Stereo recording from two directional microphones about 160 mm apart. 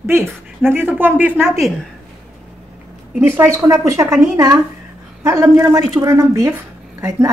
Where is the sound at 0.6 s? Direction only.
10° right (ahead or behind).